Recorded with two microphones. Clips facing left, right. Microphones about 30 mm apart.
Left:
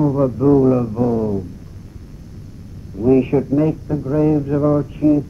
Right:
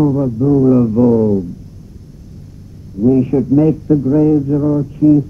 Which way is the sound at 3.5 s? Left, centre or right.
Centre.